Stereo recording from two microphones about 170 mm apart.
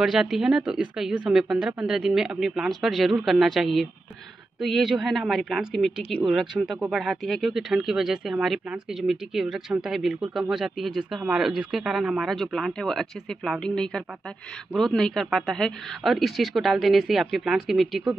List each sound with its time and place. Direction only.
0.0 s speech: centre (ahead or behind)